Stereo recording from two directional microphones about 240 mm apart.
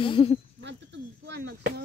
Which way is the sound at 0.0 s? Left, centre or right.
Left.